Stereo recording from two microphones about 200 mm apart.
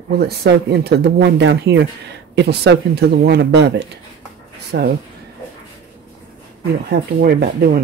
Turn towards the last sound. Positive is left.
turn(degrees=-50)  # may be behind; listen again after turning